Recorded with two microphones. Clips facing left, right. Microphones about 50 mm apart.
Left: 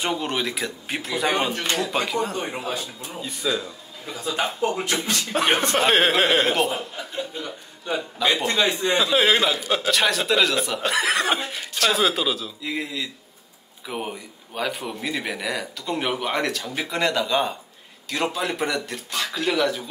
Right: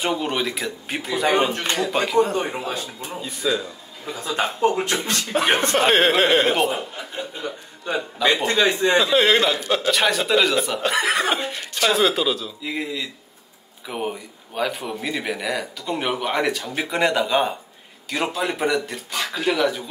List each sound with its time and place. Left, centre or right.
0.0 s a man's voice: centre
4.4 s speech: right
5.3 s a man's voice: centre
18.1 s a man's voice: centre